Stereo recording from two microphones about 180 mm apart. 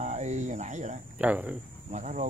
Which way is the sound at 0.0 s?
40° right (ahead or behind).